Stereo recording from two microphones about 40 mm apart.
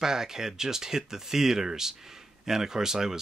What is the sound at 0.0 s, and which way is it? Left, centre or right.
Speech, centre.